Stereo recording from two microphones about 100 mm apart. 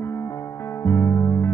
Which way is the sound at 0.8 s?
30° left (ahead or behind).